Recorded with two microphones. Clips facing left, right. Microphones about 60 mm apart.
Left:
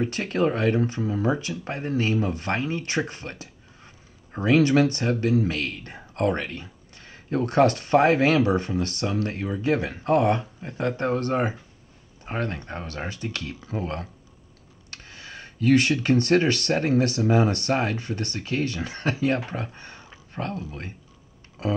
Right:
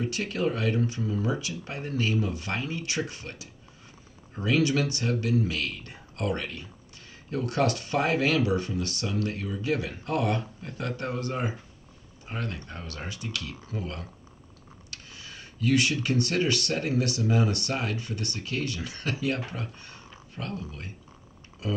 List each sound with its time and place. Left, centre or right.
0.0 s speech: left
11.1 s speech: left